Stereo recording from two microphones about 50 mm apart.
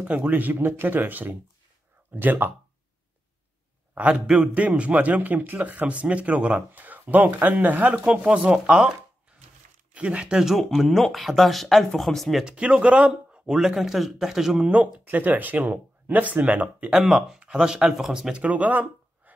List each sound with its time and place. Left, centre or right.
0.0 s speech: right
3.9 s a man's voice: right
8.1 s speech: centre
9.9 s speech: right
10.5 s speech: centre
12.4 s speech: centre
13.6 s speech: centre
14.7 s speech: right
15.0 s speech: right
17.0 s speech: centre
18.3 s speech: right